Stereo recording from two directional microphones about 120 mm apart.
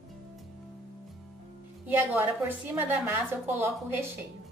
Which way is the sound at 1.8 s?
15° right (ahead or behind).